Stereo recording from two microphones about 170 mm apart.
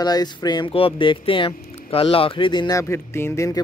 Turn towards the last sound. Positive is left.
turn(degrees=15)  # may be behind; listen again after turning